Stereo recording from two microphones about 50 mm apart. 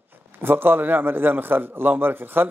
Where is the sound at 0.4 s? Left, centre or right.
Right.